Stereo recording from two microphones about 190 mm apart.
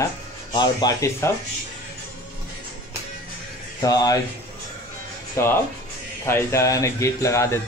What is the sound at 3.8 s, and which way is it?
Speech, 20° left (ahead or behind).